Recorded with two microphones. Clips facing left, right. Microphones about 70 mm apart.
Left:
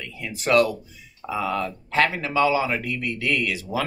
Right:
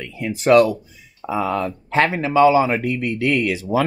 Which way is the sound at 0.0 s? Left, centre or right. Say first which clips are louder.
Right 8 dB; right.